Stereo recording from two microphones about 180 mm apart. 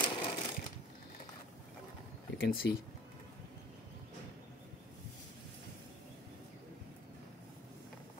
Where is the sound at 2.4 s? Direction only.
55° left (ahead or behind).